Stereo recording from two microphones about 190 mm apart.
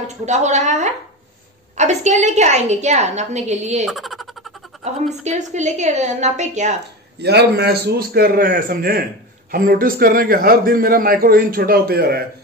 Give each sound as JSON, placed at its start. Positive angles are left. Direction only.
{"t": 0.2, "sound": "a woman's voice", "side_deg": -35}
{"t": 3.8, "sound": "a sound", "side_deg": 0}
{"t": 5.2, "sound": "a woman's voice", "side_deg": -40}
{"t": 7.2, "sound": "a man's voice", "side_deg": -60}